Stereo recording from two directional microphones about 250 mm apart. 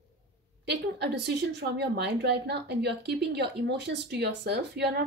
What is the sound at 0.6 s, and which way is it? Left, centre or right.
A woman's voice, right.